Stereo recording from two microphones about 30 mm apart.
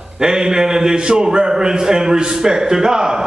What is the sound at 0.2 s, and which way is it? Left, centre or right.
A man's voice, right.